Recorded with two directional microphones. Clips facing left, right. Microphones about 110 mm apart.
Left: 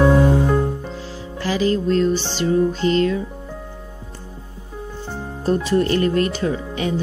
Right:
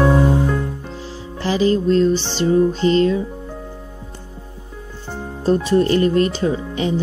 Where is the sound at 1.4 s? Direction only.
25° right (ahead or behind).